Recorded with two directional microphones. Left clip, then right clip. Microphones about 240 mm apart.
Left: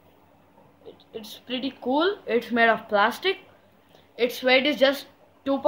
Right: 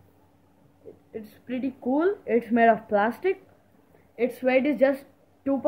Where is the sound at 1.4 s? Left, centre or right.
Right.